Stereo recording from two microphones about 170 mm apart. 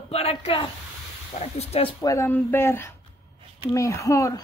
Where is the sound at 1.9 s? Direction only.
20° left (ahead or behind).